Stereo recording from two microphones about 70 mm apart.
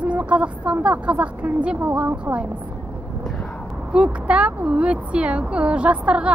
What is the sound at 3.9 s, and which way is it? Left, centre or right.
A woman's voice, centre.